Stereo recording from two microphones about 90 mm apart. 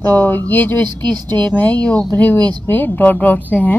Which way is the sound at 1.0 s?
50° right (ahead or behind).